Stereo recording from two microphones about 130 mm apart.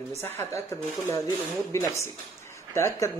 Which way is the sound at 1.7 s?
20° left (ahead or behind).